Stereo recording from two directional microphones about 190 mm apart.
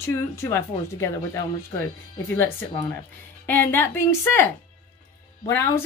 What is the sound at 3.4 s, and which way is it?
A woman's voice, 10° left (ahead or behind).